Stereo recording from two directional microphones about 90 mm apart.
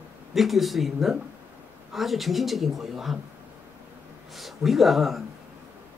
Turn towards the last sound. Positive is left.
turn(degrees=0)  # may be behind; listen again after turning